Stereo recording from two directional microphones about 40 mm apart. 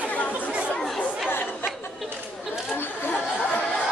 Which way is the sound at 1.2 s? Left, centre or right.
Left.